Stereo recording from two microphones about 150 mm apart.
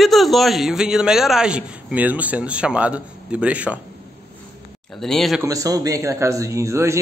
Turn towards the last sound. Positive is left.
turn(degrees=-20)  # may be behind; listen again after turning